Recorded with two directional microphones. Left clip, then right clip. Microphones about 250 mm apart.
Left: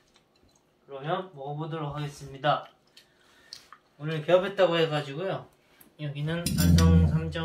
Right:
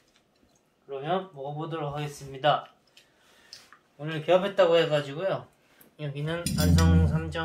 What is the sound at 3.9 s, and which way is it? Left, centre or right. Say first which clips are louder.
Speech: even; right.